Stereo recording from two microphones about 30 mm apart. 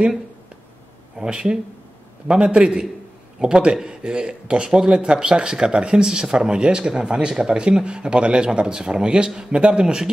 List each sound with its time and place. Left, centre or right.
1.2 s speech: right
2.2 s speech: right
6.0 s speech: centre
6.3 s speech: right